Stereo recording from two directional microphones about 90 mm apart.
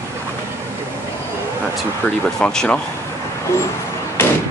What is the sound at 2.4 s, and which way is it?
Speech, 5° left (ahead or behind).